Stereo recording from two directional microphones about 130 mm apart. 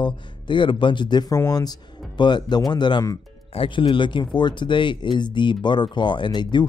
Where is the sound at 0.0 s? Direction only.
40° left (ahead or behind).